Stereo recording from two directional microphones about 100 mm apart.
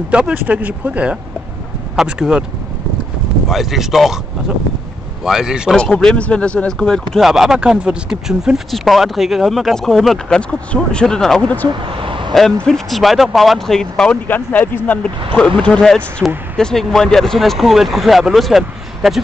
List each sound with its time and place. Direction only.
0.1 s speech: 15° right (ahead or behind)
3.4 s speech: centre (ahead or behind)
5.2 s speech: 5° right (ahead or behind)
5.8 s speech: 5° left (ahead or behind)
7.2 s speech: 5° right (ahead or behind)
11.8 s a sound: 60° right (ahead or behind)
12.6 s speech: 5° left (ahead or behind)
14.2 s speech: 20° left (ahead or behind)
15.7 s speech: 5° left (ahead or behind)